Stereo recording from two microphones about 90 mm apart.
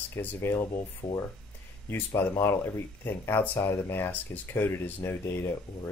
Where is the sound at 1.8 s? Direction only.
25° left (ahead or behind).